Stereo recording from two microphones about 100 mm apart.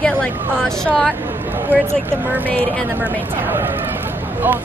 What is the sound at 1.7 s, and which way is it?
Speech, 15° left (ahead or behind).